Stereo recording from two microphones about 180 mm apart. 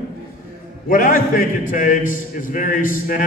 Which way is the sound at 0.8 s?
50° left (ahead or behind).